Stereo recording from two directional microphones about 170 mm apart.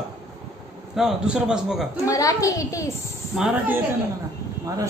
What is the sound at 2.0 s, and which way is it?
Speech, 20° left (ahead or behind).